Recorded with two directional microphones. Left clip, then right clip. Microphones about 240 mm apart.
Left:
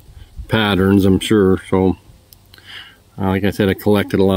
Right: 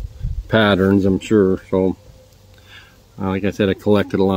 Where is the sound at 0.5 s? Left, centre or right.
Left.